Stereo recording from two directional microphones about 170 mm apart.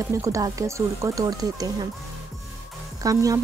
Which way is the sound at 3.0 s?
20° right (ahead or behind).